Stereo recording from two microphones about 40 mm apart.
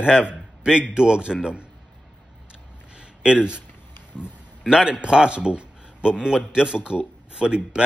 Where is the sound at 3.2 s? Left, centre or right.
Right.